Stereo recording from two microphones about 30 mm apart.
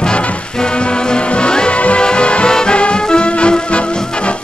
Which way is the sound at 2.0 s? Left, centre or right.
Left.